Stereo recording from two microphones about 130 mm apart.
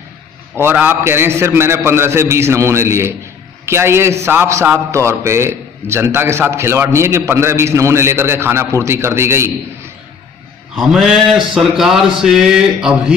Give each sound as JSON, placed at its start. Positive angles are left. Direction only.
{"t": 0.6, "sound": "a man's voice", "side_deg": -15}
{"t": 10.8, "sound": "a man's voice", "side_deg": 0}